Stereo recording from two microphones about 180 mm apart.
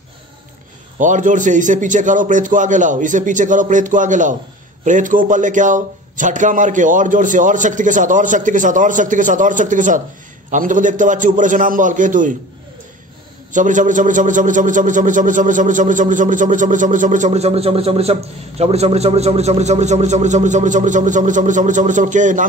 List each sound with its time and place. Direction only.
0.9 s a man's voice: 45° right (ahead or behind)
13.5 s a man's voice: 45° right (ahead or behind)